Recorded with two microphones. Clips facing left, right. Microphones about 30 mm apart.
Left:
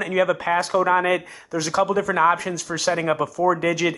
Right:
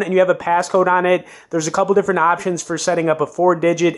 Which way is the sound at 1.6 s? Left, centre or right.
Left.